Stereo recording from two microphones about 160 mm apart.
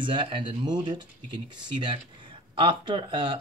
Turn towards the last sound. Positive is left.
turn(degrees=-30)  # may be behind; listen again after turning